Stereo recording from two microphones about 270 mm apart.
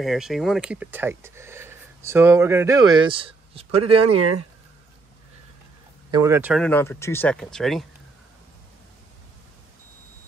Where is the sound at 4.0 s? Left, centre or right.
Right.